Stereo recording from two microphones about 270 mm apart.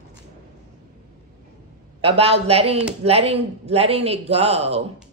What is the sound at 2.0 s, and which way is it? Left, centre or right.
A man's voice, right.